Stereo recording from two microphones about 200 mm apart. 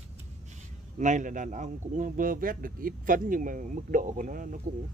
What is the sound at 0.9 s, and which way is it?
A man's voice, 35° right (ahead or behind).